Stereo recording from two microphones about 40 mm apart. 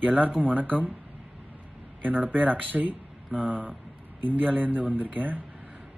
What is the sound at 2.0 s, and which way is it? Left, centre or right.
Speech, right.